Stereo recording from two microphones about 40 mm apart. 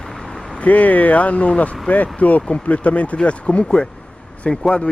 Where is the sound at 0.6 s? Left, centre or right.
Left.